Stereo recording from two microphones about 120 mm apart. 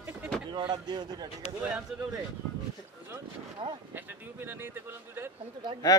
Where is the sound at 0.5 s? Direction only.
40° right (ahead or behind).